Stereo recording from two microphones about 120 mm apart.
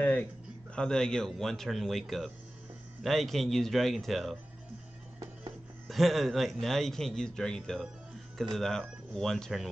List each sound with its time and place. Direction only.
0.0 s a sound: 15° left (ahead or behind)
0.7 s a man's voice: 5° left (ahead or behind)
5.9 s a man's voice: centre (ahead or behind)